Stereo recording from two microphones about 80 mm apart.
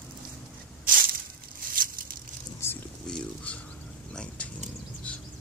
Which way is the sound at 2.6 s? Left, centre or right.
Left.